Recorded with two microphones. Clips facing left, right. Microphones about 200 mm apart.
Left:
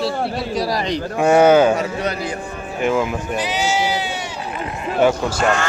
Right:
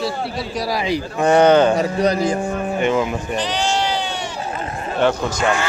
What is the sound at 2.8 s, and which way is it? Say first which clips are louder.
Speech: left 2 dB; centre (ahead or behind).